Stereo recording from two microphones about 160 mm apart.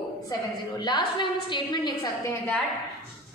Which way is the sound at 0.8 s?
30° left (ahead or behind).